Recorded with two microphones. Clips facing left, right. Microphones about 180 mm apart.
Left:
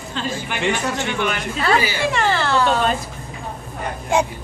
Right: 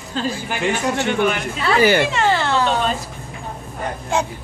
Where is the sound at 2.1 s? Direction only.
20° right (ahead or behind).